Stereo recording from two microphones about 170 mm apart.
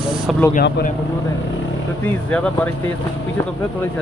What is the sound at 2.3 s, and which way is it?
Speech, 5° left (ahead or behind).